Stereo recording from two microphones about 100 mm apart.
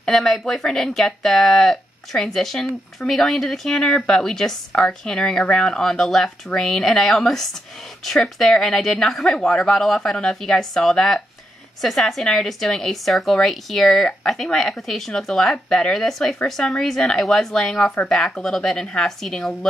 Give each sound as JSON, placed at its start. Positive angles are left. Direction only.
{"t": 0.0, "sound": "speech", "side_deg": 5}